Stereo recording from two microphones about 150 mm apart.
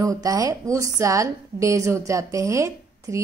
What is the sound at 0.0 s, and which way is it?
A woman's voice, 25° right (ahead or behind).